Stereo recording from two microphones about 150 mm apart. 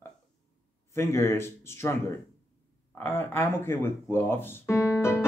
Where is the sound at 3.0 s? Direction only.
15° left (ahead or behind).